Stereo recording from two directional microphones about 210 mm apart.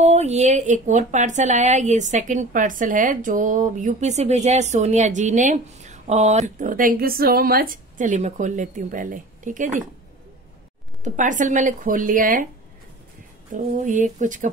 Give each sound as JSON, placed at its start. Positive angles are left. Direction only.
{"t": 0.0, "sound": "speech", "side_deg": -30}
{"t": 11.1, "sound": "speech", "side_deg": -35}
{"t": 13.5, "sound": "speech", "side_deg": -40}